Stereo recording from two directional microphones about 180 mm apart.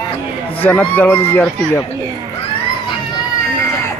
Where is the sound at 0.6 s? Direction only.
10° left (ahead or behind).